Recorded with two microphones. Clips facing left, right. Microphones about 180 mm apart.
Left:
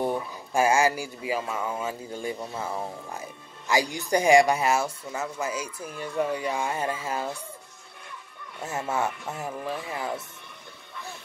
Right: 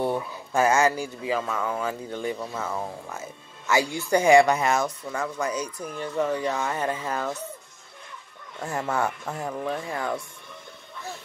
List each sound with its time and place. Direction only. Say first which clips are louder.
0.0 s a sound: right 1 dB; 15° left (ahead or behind)
0.7 s speech: right 1 dB; 10° left (ahead or behind)
1.5 s speech: right 2 dB; 25° left (ahead or behind)
2.0 s speech: right 2 dB; 10° left (ahead or behind)
5.1 s speech: right 2 dB; 25° left (ahead or behind)
5.5 s speech: right 3 dB; 5° left (ahead or behind)
8.8 s speech: right 1 dB; 5° left (ahead or behind)